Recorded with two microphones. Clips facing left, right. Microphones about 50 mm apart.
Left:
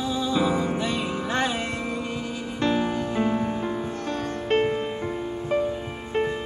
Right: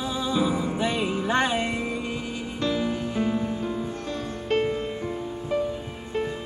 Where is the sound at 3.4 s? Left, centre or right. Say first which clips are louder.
Left 1 dB; left.